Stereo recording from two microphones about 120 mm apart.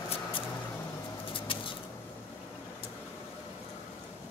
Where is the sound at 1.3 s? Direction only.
45° left (ahead or behind).